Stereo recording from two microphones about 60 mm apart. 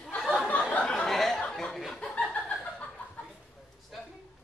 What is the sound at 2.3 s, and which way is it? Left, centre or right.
Chuckle, centre.